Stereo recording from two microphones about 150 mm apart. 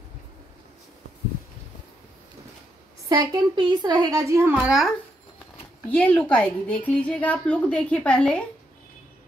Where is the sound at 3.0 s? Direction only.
25° right (ahead or behind).